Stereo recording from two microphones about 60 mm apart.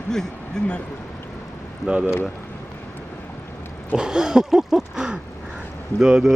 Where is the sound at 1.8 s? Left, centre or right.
Centre.